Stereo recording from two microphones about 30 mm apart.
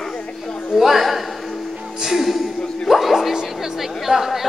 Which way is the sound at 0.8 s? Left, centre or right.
Centre.